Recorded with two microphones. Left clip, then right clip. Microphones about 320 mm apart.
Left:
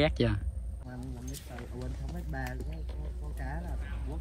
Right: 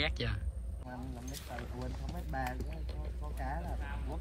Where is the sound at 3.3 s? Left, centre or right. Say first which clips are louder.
Right 2 dB; right.